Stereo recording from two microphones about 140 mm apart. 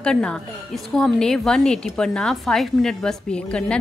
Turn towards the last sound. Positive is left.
turn(degrees=5)  # may be behind; listen again after turning